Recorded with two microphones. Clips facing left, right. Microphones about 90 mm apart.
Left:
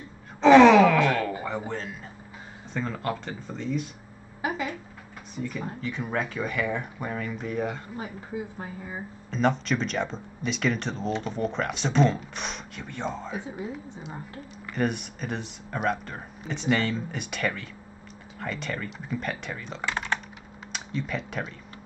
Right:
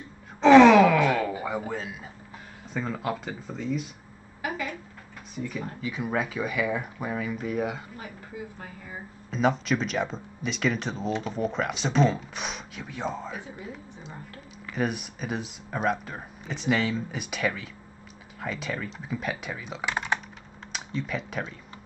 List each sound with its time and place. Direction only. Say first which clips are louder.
0.4 s wail: even; centre (ahead or behind)
1.7 s speech: even; 5° right (ahead or behind)
4.4 s a sound: left 2 dB; 20° left (ahead or behind)
5.3 s speech: left 1 dB; centre (ahead or behind)
8.0 s a woman's voice: left 5 dB; 25° left (ahead or behind)
9.3 s speech: even; 5° right (ahead or behind)
13.3 s a woman's voice: left 4 dB; 20° left (ahead or behind)
14.7 s speech: left 1 dB; centre (ahead or behind)
20.7 s speech: even; centre (ahead or behind)